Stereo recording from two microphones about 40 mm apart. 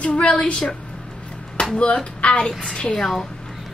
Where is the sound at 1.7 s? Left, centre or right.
Left.